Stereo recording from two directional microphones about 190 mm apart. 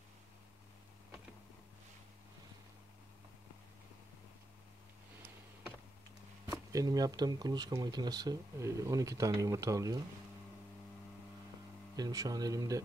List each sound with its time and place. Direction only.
6.4 s speech: 15° right (ahead or behind)
12.0 s speech: 20° right (ahead or behind)